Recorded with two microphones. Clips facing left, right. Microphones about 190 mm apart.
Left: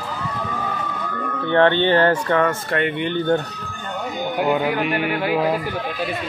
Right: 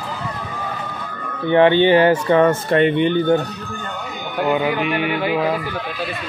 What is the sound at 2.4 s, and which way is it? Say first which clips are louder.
Speech: right 6 dB; 25° right (ahead or behind).